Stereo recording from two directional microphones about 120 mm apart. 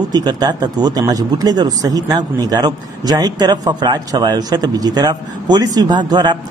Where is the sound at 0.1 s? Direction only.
35° right (ahead or behind).